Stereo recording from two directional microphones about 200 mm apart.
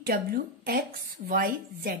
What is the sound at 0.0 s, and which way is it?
A woman's voice, 50° right (ahead or behind).